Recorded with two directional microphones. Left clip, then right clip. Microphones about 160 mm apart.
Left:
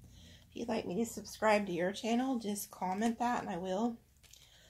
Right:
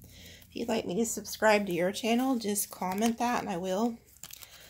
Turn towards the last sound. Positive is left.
turn(degrees=-40)  # may be behind; listen again after turning